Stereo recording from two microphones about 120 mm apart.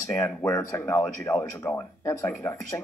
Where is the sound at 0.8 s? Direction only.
15° left (ahead or behind).